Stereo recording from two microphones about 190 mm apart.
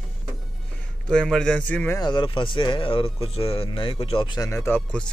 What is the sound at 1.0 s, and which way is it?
Speech, 5° left (ahead or behind).